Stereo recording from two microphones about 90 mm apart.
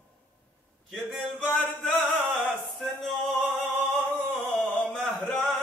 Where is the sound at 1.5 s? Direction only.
5° left (ahead or behind).